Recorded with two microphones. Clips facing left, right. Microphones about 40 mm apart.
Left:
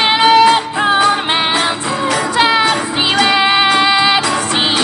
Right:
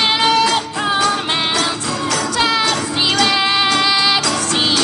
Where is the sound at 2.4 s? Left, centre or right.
Left.